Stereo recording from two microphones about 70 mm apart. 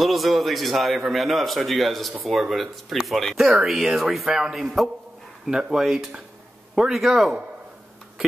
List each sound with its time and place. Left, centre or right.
0.0 s a man's voice: centre